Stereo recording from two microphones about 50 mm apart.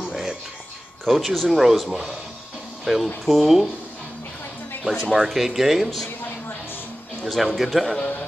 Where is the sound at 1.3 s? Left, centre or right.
Centre.